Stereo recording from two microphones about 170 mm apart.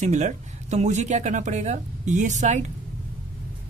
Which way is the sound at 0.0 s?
45° right (ahead or behind).